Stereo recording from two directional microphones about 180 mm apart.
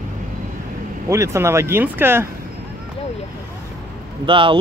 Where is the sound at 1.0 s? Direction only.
15° right (ahead or behind).